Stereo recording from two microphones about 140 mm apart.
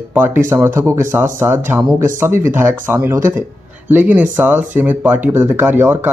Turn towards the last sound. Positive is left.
turn(degrees=-15)  # may be behind; listen again after turning